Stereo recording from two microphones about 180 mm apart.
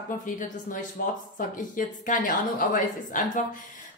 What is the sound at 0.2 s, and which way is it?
A woman's voice, 45° left (ahead or behind).